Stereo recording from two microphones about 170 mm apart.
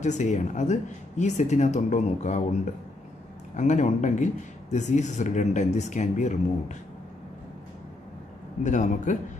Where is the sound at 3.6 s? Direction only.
45° left (ahead or behind).